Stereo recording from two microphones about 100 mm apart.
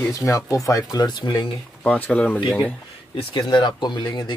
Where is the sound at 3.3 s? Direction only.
50° left (ahead or behind).